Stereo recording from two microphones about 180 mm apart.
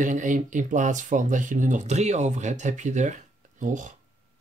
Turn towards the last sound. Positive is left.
turn(degrees=-45)  # may be behind; listen again after turning